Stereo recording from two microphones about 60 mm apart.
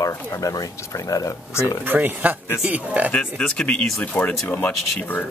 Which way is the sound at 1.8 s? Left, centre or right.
Right.